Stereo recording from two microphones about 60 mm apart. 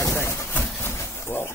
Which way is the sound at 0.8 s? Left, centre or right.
Left.